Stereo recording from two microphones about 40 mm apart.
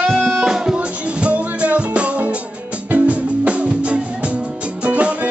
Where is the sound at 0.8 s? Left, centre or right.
Right.